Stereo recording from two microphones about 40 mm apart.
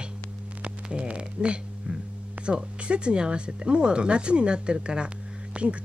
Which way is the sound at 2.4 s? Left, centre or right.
Right.